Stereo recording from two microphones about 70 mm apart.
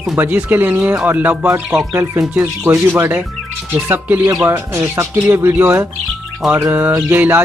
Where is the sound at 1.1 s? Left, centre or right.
Right.